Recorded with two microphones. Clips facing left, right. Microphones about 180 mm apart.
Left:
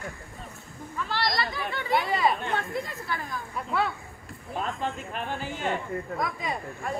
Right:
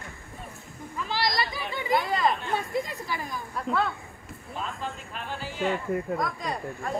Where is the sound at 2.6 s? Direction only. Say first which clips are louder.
Right 2 dB; 15° right (ahead or behind).